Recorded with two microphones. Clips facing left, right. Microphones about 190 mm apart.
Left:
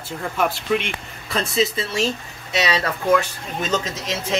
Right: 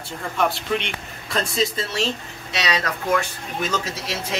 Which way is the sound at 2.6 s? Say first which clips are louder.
Left 2 dB; 25° left (ahead or behind).